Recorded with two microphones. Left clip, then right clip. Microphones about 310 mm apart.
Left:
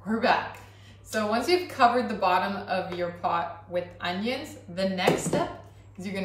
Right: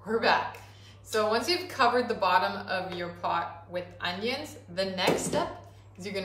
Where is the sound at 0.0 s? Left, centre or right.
Centre.